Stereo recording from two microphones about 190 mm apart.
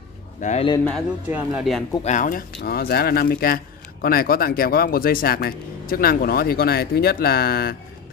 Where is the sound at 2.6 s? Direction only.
55° left (ahead or behind).